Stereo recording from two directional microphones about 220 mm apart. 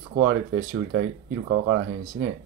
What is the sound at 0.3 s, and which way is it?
Speech, 65° right (ahead or behind).